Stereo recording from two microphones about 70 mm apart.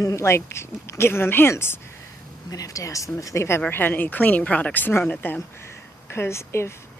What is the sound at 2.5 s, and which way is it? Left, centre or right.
Speech, left.